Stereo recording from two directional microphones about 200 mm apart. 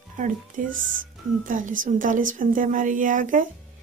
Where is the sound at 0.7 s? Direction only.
40° right (ahead or behind).